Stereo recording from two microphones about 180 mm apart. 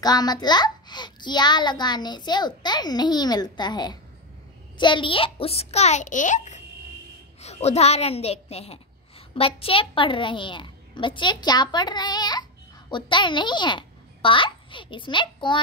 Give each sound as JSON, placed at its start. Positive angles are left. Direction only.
{"t": 0.0, "sound": "a child's voice", "side_deg": 20}